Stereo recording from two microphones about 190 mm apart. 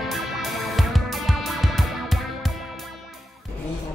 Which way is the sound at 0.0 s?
Centre (ahead or behind).